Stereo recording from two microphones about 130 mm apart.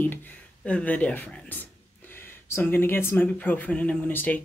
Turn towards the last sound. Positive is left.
turn(degrees=15)  # may be behind; listen again after turning